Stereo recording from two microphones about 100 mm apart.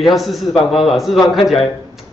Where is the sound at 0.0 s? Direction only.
Centre (ahead or behind).